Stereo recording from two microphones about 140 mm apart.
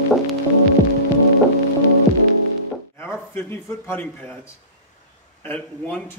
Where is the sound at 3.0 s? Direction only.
15° left (ahead or behind).